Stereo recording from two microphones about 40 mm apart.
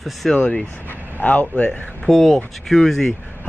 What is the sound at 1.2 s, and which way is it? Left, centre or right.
Speech, left.